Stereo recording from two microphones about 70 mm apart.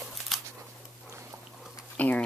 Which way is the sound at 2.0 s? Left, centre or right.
Left.